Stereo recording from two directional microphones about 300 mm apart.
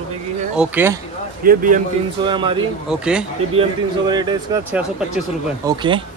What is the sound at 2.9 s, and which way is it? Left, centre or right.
Speech, centre.